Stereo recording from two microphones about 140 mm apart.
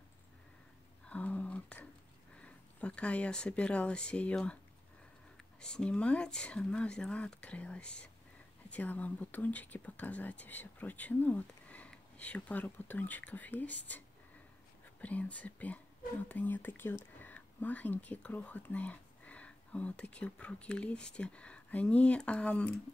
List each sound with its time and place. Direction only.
1.0 s a sound: 10° left (ahead or behind)
2.4 s speech: 10° left (ahead or behind)
5.6 s speech: 5° left (ahead or behind)